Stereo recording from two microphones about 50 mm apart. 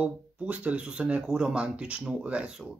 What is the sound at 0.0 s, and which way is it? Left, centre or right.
Speech, right.